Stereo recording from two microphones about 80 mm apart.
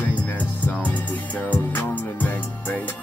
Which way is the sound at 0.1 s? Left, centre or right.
Centre.